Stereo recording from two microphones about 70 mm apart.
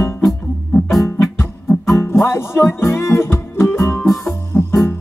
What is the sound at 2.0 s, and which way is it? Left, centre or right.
Music, left.